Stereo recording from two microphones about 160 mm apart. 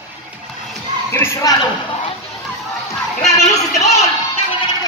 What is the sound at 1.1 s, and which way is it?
Speech, 15° left (ahead or behind).